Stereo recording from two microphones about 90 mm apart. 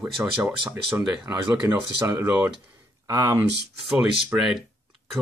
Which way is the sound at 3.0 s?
40° right (ahead or behind).